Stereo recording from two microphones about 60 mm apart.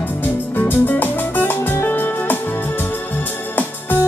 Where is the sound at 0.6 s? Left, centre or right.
Left.